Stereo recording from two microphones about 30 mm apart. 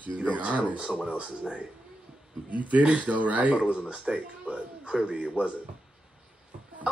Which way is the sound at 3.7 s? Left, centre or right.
Right.